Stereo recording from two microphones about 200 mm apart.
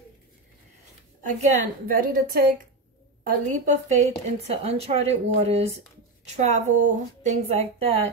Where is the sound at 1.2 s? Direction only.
35° right (ahead or behind).